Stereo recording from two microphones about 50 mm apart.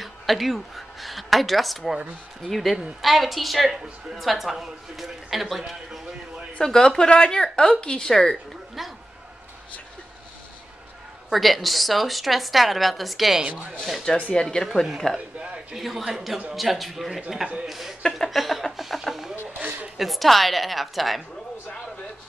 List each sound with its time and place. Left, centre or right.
0.0 s a woman's voice: centre
6.6 s speech: centre
8.8 s a sound: centre
11.3 s a woman's voice: centre
13.5 s speech: right
14.3 s speech: centre
14.6 s a woman's voice: centre
15.3 s a sound: centre
15.7 s a woman's voice: centre
18.1 s music: centre
20.0 s a woman's voice: centre